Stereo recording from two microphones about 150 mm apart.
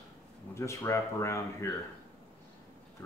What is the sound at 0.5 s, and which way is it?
Speech, 20° left (ahead or behind).